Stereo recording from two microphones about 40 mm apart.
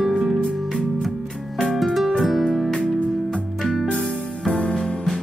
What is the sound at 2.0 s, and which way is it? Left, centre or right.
Music, centre.